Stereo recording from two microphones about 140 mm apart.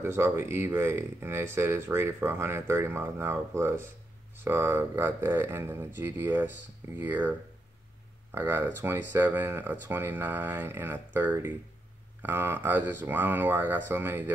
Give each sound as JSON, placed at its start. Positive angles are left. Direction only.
{"t": 0.0, "sound": "speech", "side_deg": -15}